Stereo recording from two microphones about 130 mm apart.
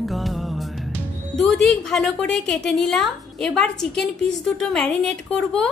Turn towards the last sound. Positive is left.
turn(degrees=5)  # may be behind; listen again after turning